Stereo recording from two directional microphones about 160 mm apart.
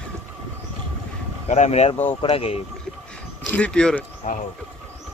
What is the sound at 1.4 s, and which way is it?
Speech, 45° left (ahead or behind).